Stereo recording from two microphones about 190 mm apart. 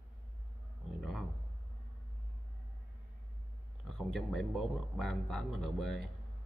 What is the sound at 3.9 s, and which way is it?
Speech, centre (ahead or behind).